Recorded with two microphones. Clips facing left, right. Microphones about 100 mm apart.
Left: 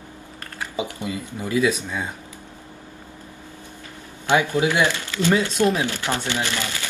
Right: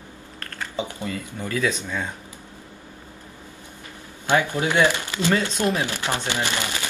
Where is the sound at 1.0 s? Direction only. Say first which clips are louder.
Left 1 dB; 15° left (ahead or behind).